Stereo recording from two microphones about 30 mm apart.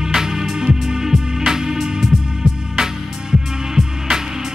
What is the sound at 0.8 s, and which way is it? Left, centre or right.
Music, centre.